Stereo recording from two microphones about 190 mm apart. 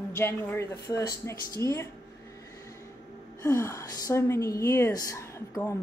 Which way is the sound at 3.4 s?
15° left (ahead or behind).